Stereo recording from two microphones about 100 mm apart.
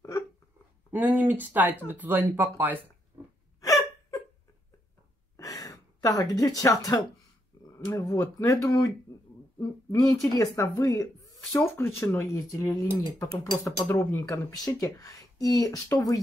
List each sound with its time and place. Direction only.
0.9 s speech: 15° right (ahead or behind)
3.6 s hiccup: 35° left (ahead or behind)
5.4 s gasp: 35° left (ahead or behind)
7.7 s speech: 30° left (ahead or behind)
13.8 s speech: 35° left (ahead or behind)